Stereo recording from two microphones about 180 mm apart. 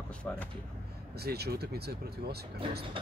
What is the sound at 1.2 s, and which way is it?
Speech, 60° right (ahead or behind).